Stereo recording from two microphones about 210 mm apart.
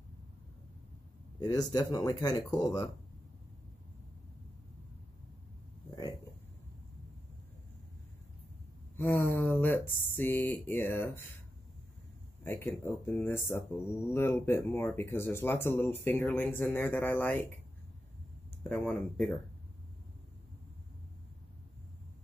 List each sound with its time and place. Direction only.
1.4 s speech: 20° left (ahead or behind)
8.9 s speech: 10° left (ahead or behind)
12.4 s speech: 10° left (ahead or behind)
18.6 s speech: 5° left (ahead or behind)